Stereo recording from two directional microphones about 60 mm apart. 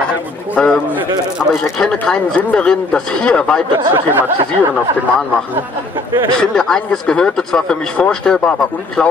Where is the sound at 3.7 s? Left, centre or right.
Right.